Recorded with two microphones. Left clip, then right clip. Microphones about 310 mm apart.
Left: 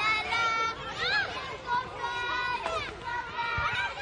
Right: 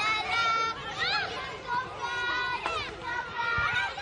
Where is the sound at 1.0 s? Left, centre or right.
Centre.